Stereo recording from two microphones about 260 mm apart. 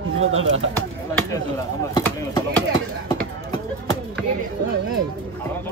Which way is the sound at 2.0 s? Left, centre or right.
Centre.